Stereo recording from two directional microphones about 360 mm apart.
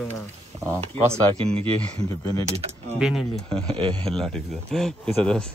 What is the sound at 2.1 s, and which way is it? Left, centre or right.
Speech, centre.